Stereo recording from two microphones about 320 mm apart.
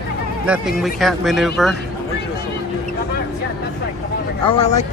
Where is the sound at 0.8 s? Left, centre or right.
Centre.